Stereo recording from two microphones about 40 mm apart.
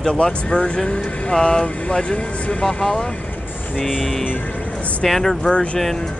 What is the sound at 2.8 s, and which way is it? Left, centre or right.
Speech, centre.